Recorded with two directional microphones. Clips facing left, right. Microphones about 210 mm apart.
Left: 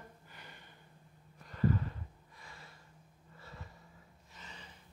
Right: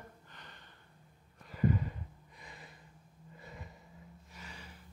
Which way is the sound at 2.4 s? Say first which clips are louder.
Right 2 dB; 20° right (ahead or behind).